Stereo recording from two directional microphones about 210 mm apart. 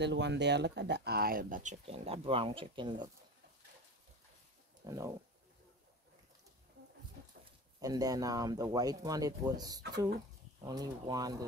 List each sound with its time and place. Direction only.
0.0 s speech: 55° right (ahead or behind); by 3.1 s 20° right (ahead or behind)
4.8 s speech: 15° right (ahead or behind)
7.8 s speech: 15° right (ahead or behind)